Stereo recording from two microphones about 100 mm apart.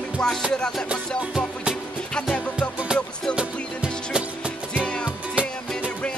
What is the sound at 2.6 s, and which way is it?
Music, 10° right (ahead or behind).